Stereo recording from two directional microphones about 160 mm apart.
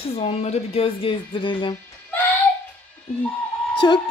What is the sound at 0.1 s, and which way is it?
A woman's voice, 40° left (ahead or behind).